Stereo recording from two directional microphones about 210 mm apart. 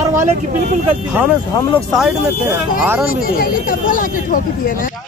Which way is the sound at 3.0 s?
45° left (ahead or behind).